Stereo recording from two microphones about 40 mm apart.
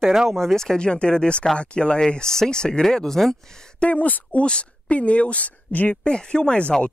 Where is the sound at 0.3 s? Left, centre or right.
Centre.